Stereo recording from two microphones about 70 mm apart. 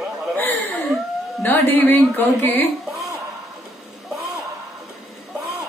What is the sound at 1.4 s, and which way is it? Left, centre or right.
A woman's voice, left.